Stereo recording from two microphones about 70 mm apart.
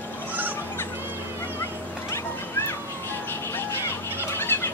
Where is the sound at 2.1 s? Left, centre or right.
Left.